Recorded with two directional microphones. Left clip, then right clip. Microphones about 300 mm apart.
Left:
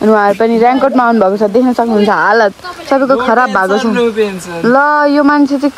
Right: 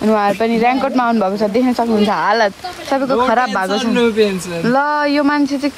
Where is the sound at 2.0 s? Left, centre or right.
Left.